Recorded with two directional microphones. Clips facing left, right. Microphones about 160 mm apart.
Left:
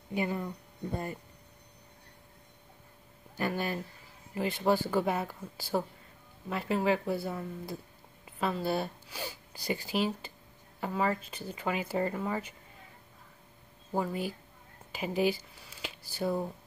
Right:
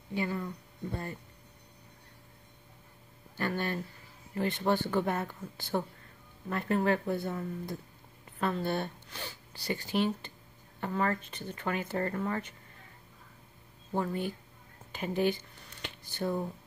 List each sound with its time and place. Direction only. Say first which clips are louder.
0.1 s speech: left 1 dB; 15° left (ahead or behind)
3.3 s speech: even; 10° left (ahead or behind)
13.9 s speech: even; 10° left (ahead or behind)